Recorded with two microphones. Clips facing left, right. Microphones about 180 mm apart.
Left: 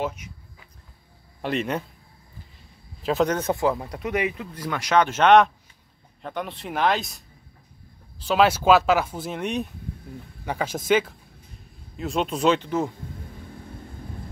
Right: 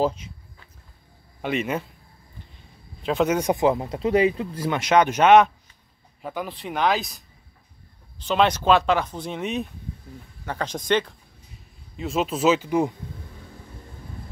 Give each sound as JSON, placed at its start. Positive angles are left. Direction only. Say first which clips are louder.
{"t": 0.0, "sound": "speech", "louder": "right 6 dB", "side_deg": -30}
{"t": 1.4, "sound": "speech", "louder": "right 1 dB", "side_deg": 0}
{"t": 3.0, "sound": "speech", "louder": "even", "side_deg": 0}
{"t": 3.3, "sound": "speech", "louder": "right 3 dB", "side_deg": -15}
{"t": 6.2, "sound": "speech", "louder": "right 1 dB", "side_deg": 0}
{"t": 8.3, "sound": "speech", "louder": "left 1 dB", "side_deg": 5}